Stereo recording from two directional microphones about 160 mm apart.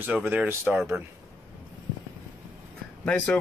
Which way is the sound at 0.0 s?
10° right (ahead or behind).